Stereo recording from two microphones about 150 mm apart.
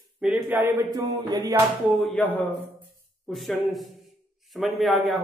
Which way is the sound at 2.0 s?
5° left (ahead or behind).